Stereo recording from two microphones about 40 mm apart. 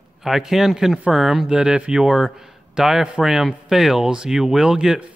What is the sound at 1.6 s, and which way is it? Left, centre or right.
Speech, right.